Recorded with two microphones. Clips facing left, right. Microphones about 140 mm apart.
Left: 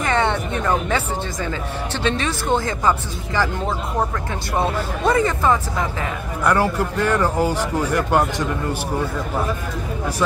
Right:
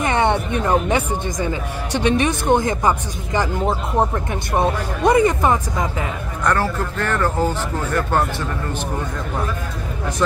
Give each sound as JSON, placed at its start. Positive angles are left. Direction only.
{"t": 0.0, "sound": "speech", "side_deg": -20}
{"t": 4.6, "sound": "speech", "side_deg": -20}
{"t": 6.4, "sound": "speech", "side_deg": 10}